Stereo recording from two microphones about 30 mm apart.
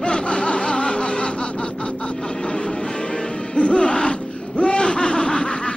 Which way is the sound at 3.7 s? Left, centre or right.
Left.